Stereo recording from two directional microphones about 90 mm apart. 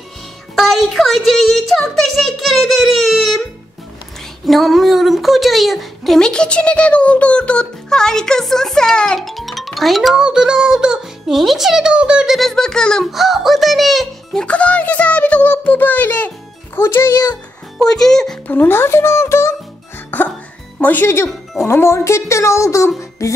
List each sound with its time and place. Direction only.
0.6 s a sound: centre (ahead or behind)
4.5 s a woman's voice: centre (ahead or behind)
12.4 s a child's voice: 5° left (ahead or behind)
14.4 s a child's voice: 15° left (ahead or behind)
17.1 s speech: 45° left (ahead or behind)
17.7 s a woman's voice: 5° left (ahead or behind)
18.5 s a child's voice: 25° left (ahead or behind)
20.1 s music: 20° left (ahead or behind)
20.8 s a child's voice: 20° left (ahead or behind)